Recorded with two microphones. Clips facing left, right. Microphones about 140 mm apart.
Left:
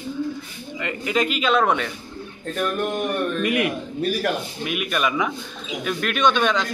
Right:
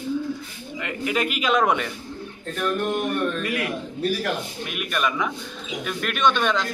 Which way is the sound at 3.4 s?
20° left (ahead or behind).